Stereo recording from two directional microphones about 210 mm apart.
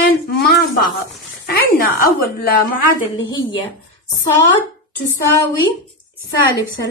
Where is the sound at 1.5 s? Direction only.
45° left (ahead or behind).